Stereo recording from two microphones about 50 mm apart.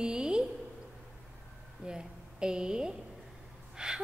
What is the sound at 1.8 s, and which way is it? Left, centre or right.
A woman's voice, centre.